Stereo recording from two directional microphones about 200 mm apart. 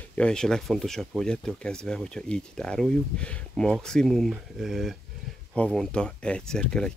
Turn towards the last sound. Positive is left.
turn(degrees=5)  # may be behind; listen again after turning